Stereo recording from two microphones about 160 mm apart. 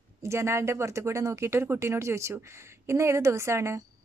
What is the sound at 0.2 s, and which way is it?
Speech, 15° right (ahead or behind).